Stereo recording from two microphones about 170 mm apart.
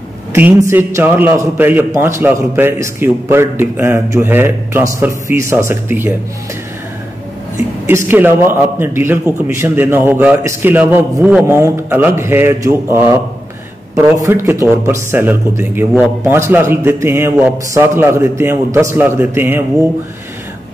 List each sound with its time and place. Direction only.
0.3 s a man's voice: 15° right (ahead or behind)
7.8 s a man's voice: 15° right (ahead or behind)